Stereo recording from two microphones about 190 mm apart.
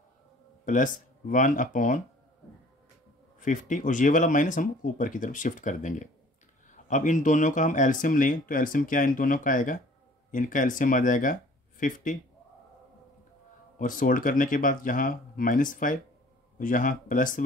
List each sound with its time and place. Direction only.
0.7 s speech: 45° left (ahead or behind)
3.3 s speech: 45° left (ahead or behind)
13.7 s speech: 45° left (ahead or behind)